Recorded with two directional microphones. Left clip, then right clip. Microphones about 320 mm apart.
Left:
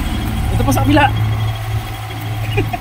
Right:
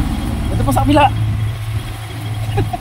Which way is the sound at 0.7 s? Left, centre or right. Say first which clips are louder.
Right 1 dB; centre.